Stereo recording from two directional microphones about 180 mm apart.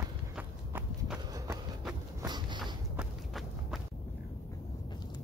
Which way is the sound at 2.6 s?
Centre (ahead or behind).